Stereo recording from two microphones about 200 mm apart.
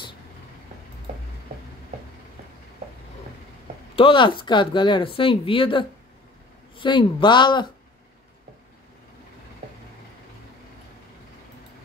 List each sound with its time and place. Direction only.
3.9 s speech: 25° left (ahead or behind)